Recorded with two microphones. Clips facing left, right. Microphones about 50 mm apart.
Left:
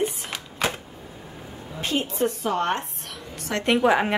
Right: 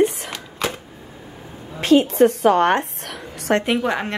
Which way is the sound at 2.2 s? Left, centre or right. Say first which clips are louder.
Right 10 dB; right.